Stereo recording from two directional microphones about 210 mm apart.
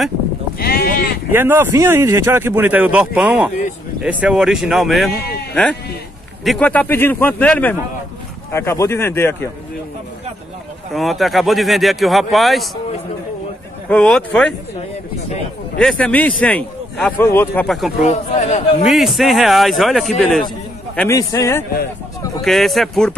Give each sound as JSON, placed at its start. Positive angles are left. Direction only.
{"t": 0.6, "sound": "sheep", "side_deg": 45}
{"t": 1.3, "sound": "a man's voice", "side_deg": -10}
{"t": 10.9, "sound": "speech", "side_deg": 0}
{"t": 13.8, "sound": "speech", "side_deg": 5}
{"t": 15.8, "sound": "a man's voice", "side_deg": 5}
{"t": 18.0, "sound": "speech", "side_deg": 30}
{"t": 18.9, "sound": "a man's voice", "side_deg": 0}
{"t": 22.4, "sound": "speech", "side_deg": 0}